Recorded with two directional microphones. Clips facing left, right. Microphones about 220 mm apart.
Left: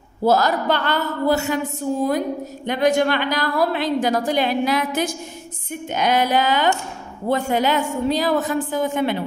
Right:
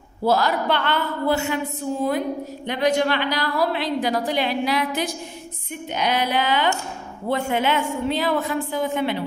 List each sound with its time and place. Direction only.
0.2 s a woman's voice: 45° left (ahead or behind)